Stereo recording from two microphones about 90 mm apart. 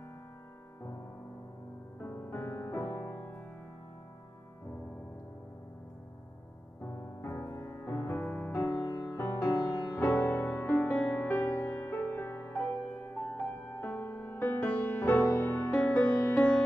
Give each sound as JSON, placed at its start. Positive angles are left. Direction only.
{"t": 2.0, "sound": "music", "side_deg": 30}
{"t": 3.0, "sound": "music", "side_deg": 20}
{"t": 6.8, "sound": "music", "side_deg": 35}
{"t": 8.5, "sound": "music", "side_deg": 30}
{"t": 10.3, "sound": "music", "side_deg": 20}
{"t": 15.7, "sound": "music", "side_deg": 15}